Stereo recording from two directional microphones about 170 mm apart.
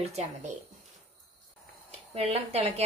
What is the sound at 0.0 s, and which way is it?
Speech, 40° right (ahead or behind).